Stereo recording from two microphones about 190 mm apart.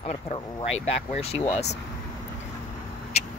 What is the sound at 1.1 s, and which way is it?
Speech, 30° left (ahead or behind).